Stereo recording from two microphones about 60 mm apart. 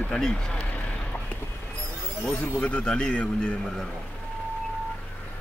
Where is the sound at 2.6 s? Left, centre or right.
Centre.